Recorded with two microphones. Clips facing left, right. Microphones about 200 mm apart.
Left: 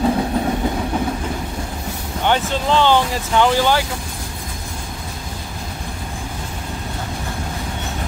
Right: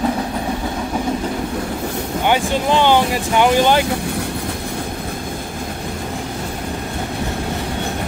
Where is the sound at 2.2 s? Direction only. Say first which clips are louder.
Right 1 dB; 10° right (ahead or behind).